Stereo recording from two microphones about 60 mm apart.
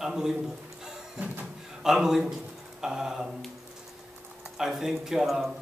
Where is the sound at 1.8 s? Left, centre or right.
Centre.